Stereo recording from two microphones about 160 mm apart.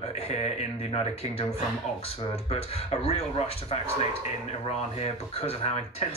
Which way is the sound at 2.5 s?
40° left (ahead or behind).